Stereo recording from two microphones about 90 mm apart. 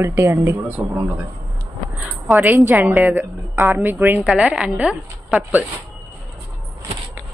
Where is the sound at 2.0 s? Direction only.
20° right (ahead or behind).